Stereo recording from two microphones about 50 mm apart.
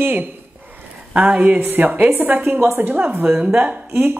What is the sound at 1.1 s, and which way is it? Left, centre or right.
Speech, right.